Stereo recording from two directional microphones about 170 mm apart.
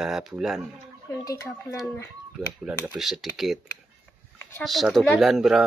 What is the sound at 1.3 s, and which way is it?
Speech, 15° left (ahead or behind).